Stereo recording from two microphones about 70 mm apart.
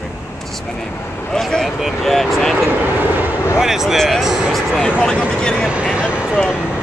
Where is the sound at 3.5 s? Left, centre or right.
Centre.